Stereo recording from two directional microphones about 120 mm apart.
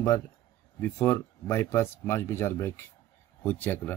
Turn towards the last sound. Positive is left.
turn(degrees=15)  # may be behind; listen again after turning